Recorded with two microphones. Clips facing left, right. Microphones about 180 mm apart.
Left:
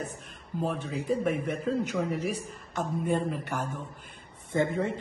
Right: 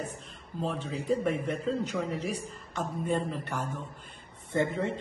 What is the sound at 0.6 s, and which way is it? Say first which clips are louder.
A woman's voice: left 2 dB; 10° left (ahead or behind).